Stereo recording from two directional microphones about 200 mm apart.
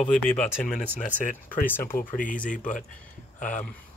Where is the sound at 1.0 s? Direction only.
40° left (ahead or behind).